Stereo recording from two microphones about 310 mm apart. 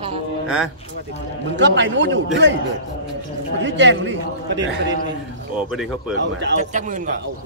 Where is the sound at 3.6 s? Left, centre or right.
Right.